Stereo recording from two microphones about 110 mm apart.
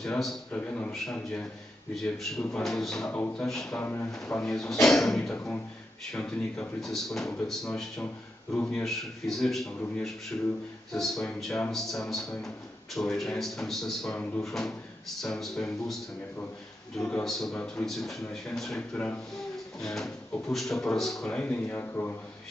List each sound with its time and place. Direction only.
0.0 s a man's voice: 5° left (ahead or behind)
3.1 s a man's voice: 15° left (ahead or behind)
3.3 s a man's voice: 5° left (ahead or behind)
3.8 s a man's voice: 15° left (ahead or behind)
4.3 s a man's voice: 5° left (ahead or behind)